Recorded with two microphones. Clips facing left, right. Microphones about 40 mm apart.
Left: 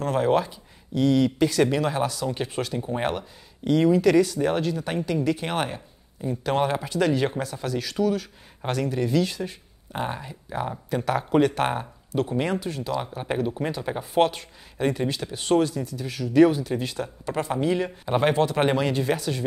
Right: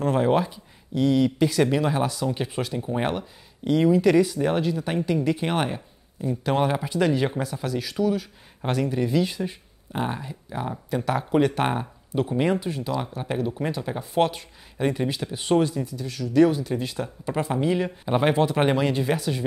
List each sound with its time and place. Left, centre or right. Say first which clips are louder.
0.0 s speech: right 1 dB; centre
9.9 s speech: right 1 dB; centre
12.9 s speech: left 2 dB; centre
13.8 s speech: left 3 dB; centre
14.2 s speech: left 1 dB; centre
16.0 s speech: left 1 dB; centre
16.6 s speech: even; centre
18.3 s speech: right 1 dB; centre
18.6 s speech: right 1 dB; centre